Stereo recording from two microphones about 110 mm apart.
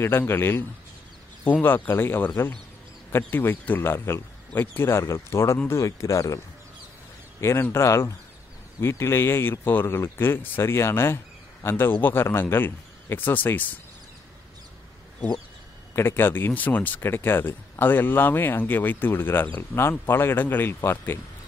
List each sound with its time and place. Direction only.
0.0 s a man's voice: 20° left (ahead or behind)
15.1 s speech: 10° left (ahead or behind)